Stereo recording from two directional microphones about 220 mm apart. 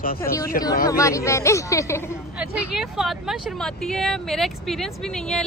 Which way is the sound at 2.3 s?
5° right (ahead or behind).